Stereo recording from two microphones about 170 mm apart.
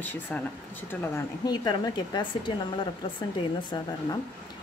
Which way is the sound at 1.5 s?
25° left (ahead or behind).